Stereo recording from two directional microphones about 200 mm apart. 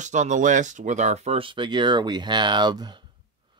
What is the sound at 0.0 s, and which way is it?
Speech, 35° right (ahead or behind).